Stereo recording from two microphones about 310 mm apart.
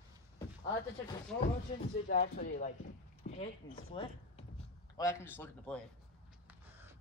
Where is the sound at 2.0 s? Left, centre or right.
Left; by 5.8 s centre.